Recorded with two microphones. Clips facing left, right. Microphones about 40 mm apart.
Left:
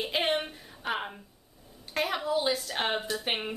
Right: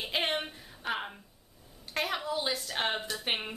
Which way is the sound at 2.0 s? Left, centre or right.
Centre.